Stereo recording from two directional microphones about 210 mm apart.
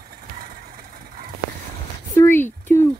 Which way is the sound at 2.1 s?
10° left (ahead or behind).